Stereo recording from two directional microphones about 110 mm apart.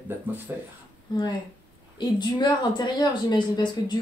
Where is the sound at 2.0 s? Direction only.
45° left (ahead or behind).